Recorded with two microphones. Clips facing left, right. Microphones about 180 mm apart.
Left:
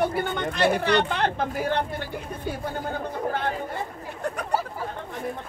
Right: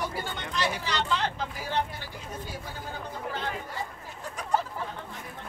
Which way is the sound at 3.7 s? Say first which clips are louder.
Left 5 dB; 60° left (ahead or behind).